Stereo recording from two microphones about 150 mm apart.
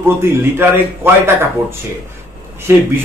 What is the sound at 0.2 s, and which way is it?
A man's voice, 15° right (ahead or behind).